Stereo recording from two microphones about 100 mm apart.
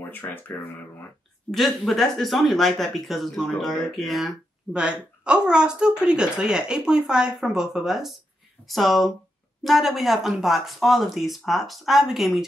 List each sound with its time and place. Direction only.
0.1 s speech: 20° left (ahead or behind)
1.5 s speech: centre (ahead or behind)
4.7 s speech: 10° right (ahead or behind)